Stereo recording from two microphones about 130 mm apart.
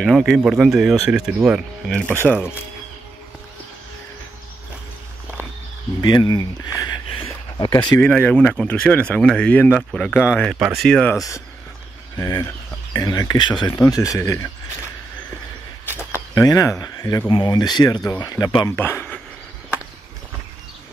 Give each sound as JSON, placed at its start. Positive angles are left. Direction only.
{"t": 0.0, "sound": "speech", "side_deg": 0}
{"t": 5.9, "sound": "speech", "side_deg": 35}
{"t": 7.2, "sound": "a sound", "side_deg": 30}
{"t": 8.0, "sound": "speech", "side_deg": 10}
{"t": 10.5, "sound": "speech", "side_deg": -5}
{"t": 11.1, "sound": "speech", "side_deg": 25}
{"t": 13.7, "sound": "speech", "side_deg": 25}
{"t": 16.0, "sound": "speech", "side_deg": 20}
{"t": 18.7, "sound": "speech", "side_deg": 15}